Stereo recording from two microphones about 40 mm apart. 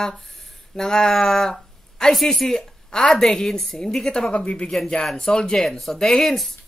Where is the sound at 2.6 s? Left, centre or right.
Centre.